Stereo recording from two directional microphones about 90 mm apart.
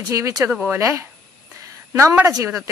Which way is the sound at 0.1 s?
40° right (ahead or behind).